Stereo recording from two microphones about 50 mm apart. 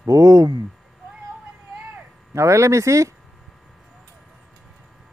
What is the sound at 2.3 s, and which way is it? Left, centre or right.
Speech, right.